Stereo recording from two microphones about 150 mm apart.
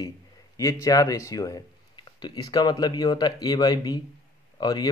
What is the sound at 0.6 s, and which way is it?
Speech, 20° left (ahead or behind).